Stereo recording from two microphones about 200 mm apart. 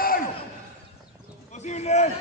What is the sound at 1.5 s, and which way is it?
Speech, 35° left (ahead or behind).